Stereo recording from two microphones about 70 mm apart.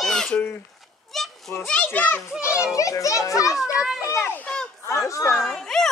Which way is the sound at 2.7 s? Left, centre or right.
Left.